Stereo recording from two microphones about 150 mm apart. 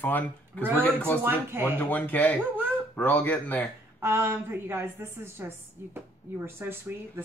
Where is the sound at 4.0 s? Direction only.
15° right (ahead or behind).